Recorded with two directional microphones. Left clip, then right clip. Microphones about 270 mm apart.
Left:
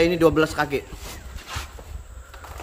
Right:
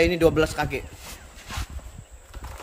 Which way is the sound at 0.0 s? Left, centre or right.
Centre.